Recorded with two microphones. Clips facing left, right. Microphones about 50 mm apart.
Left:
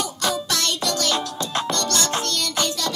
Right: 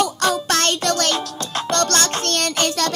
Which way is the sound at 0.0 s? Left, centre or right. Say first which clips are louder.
Right 6 dB; right.